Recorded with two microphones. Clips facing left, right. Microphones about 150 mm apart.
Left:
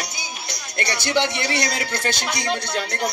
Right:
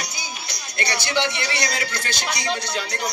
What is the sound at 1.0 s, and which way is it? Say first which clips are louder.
A woman's voice: left 4 dB; 50° left (ahead or behind).